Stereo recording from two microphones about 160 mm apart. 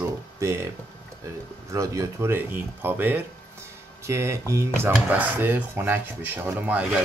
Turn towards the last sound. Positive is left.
turn(degrees=-10)  # may be behind; listen again after turning